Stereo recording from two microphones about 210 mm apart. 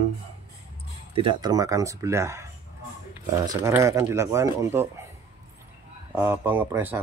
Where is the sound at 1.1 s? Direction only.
20° right (ahead or behind).